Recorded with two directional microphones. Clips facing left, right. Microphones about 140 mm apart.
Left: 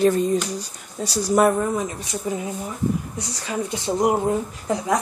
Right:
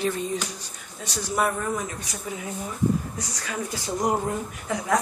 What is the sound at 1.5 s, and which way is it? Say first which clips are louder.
Speech: left 5 dB; 25° left (ahead or behind).